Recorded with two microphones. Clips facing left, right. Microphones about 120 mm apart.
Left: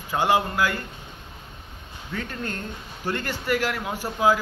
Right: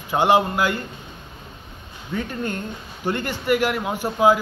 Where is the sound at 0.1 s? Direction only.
25° right (ahead or behind).